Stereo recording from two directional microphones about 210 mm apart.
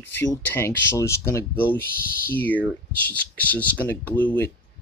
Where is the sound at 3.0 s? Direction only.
10° left (ahead or behind).